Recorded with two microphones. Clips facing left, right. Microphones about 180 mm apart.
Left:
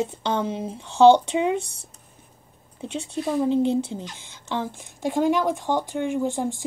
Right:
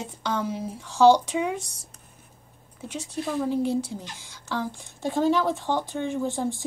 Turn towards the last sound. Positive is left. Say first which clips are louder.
# left 2 dB
turn(degrees=15)  # may be behind; listen again after turning